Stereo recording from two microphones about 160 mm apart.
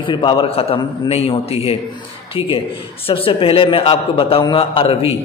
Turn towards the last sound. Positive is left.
turn(degrees=35)  # may be behind; listen again after turning